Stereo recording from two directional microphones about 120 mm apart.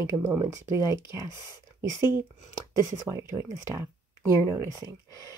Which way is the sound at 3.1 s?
5° right (ahead or behind).